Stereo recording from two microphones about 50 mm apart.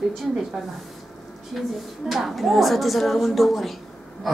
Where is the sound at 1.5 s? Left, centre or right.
Centre.